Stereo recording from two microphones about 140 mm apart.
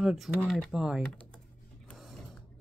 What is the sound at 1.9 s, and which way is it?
Mechanisms, centre (ahead or behind).